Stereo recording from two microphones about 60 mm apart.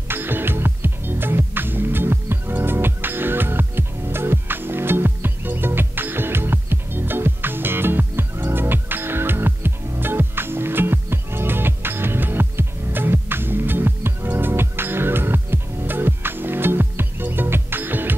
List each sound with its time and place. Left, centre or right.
0.1 s music: right